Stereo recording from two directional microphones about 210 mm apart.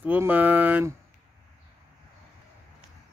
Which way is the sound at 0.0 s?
10° right (ahead or behind).